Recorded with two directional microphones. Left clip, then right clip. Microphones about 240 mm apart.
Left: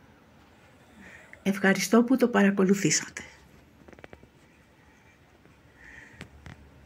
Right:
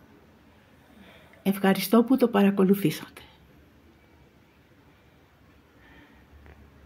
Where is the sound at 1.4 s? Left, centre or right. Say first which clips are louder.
Even; centre.